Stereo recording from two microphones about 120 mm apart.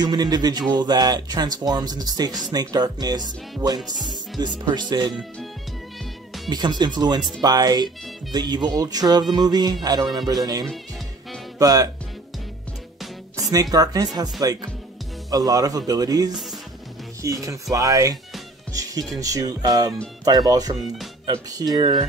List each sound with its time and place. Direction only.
0.0 s speech: 35° right (ahead or behind)
6.5 s speech: 35° right (ahead or behind)
13.4 s speech: 30° right (ahead or behind)
18.7 s music: 30° right (ahead or behind)
19.1 s speech: 30° right (ahead or behind)